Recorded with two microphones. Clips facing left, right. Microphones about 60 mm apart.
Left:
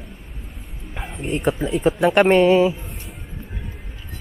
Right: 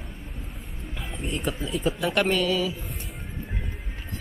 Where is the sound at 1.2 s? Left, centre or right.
Left.